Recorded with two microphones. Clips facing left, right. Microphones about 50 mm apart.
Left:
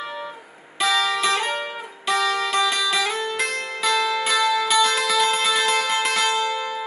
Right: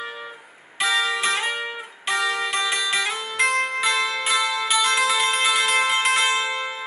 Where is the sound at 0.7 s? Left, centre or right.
Centre.